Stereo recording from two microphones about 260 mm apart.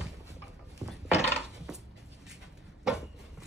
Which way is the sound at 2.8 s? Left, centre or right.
Centre.